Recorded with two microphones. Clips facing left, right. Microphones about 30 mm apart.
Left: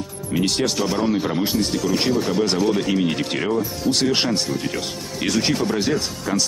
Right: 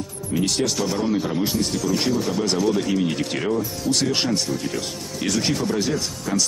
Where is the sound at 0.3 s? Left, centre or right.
Left.